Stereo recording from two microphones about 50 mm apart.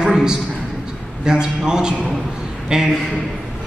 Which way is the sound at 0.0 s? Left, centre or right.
Centre.